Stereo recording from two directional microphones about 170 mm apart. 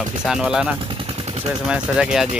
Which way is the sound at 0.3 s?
5° right (ahead or behind).